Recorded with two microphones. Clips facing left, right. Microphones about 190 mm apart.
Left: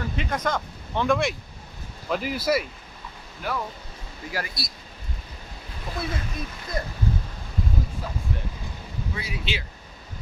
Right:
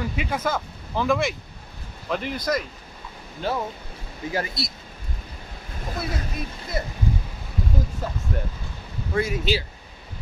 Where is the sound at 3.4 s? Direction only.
30° right (ahead or behind).